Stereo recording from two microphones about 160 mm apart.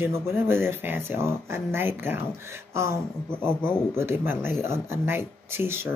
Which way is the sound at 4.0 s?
15° right (ahead or behind).